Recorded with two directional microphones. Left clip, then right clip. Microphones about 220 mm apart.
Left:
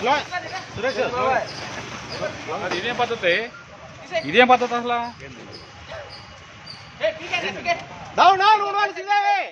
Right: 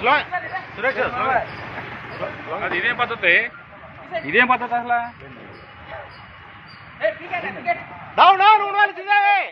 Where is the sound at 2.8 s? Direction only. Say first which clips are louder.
Right 4 dB; 35° left (ahead or behind).